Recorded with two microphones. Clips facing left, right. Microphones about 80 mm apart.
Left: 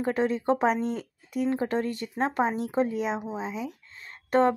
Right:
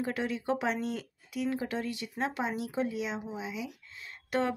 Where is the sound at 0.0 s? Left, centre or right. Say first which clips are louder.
Left 7 dB; left.